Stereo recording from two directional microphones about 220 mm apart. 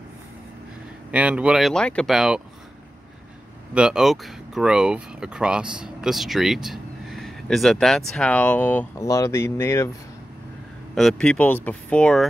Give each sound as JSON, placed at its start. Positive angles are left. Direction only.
{"t": 1.1, "sound": "speech", "side_deg": -5}
{"t": 3.7, "sound": "speech", "side_deg": -5}
{"t": 11.0, "sound": "speech", "side_deg": 0}